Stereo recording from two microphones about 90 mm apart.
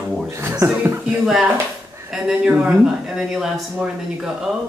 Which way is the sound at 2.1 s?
15° right (ahead or behind).